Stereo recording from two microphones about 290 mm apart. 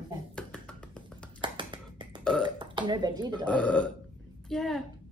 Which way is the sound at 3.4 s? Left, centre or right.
Centre.